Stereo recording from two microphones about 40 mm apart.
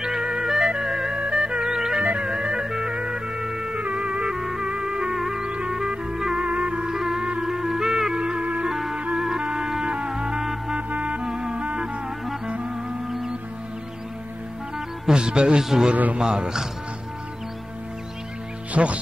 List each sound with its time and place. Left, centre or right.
0.0 s music: centre
3.7 s music: right
4.3 s music: centre
5.1 s music: centre
5.4 s music: right
5.7 s music: centre
6.4 s music: right
6.9 s music: centre
8.2 s music: right
8.6 s music: centre
9.2 s music: centre
11.2 s music: centre
15.0 s a man's voice: right
18.7 s speech: right